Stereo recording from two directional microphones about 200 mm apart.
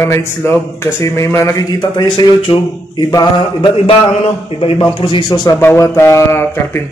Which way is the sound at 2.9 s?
20° left (ahead or behind).